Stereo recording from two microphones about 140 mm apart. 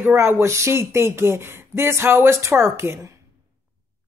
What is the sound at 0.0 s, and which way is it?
Speech, 15° right (ahead or behind).